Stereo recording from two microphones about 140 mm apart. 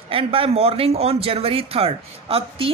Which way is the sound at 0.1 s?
40° right (ahead or behind).